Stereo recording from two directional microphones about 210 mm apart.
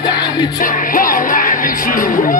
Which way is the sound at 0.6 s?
40° left (ahead or behind).